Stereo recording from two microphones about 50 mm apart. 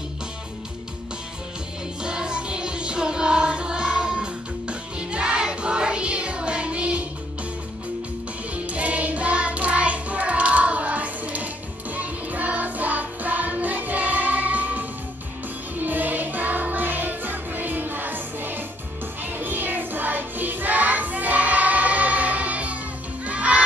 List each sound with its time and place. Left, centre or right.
2.0 s music: centre
8.6 s music: right